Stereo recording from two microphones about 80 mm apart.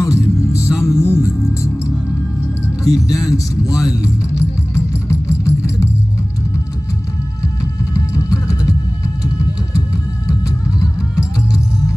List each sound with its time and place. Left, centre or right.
0.0 s music: left
2.9 s music: left
7.9 s music: left
10.8 s music: left